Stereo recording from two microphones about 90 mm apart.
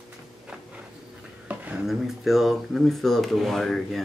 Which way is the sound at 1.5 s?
15° right (ahead or behind).